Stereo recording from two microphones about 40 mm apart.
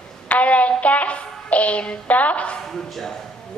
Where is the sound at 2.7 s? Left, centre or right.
Centre.